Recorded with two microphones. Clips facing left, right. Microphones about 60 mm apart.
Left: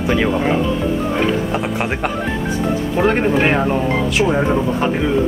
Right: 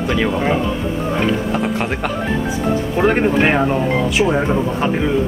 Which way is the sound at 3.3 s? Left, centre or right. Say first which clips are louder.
Even; centre.